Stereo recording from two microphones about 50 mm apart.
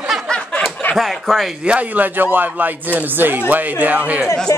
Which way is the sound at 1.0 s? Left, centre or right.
Centre.